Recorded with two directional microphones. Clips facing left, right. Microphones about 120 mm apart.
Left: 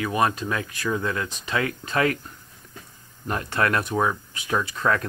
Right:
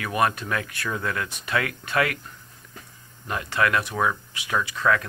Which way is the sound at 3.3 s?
40° left (ahead or behind).